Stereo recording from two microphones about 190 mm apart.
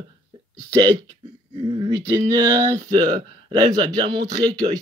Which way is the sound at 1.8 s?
20° right (ahead or behind).